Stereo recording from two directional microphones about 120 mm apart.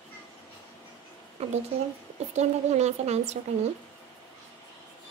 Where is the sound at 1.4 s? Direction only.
60° right (ahead or behind).